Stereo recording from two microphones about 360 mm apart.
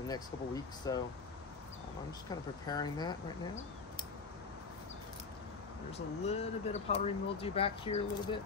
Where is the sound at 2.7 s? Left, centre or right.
Centre.